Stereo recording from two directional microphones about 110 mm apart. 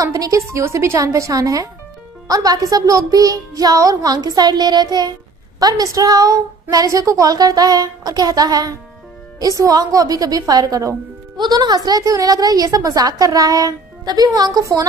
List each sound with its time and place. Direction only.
0.0 s a woman's voice: 30° right (ahead or behind)